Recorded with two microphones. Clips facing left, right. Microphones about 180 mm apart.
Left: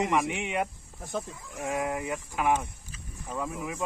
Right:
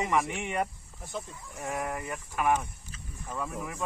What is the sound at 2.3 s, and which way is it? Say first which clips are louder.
A man's voice: even; 20° left (ahead or behind).